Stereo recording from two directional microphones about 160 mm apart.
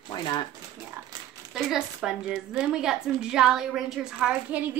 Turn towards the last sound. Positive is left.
turn(degrees=-10)  # may be behind; listen again after turning